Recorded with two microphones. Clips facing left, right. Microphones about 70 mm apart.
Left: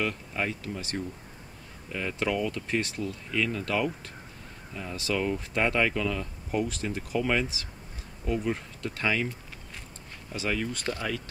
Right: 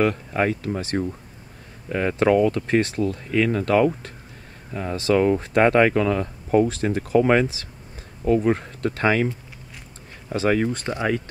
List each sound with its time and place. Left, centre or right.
0.0 s speech: right
10.3 s speech: right
10.7 s speech: right